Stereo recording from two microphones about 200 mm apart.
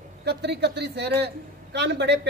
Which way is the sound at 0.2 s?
55° right (ahead or behind).